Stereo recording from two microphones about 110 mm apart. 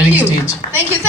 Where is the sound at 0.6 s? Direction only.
90° left.